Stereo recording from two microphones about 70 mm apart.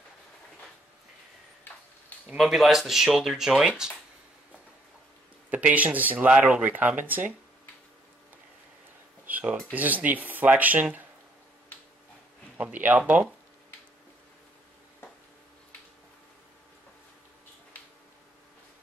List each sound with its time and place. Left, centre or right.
1.7 s a sound: left
2.3 s speech: centre
5.5 s speech: right
9.2 s speech: right
12.5 s speech: right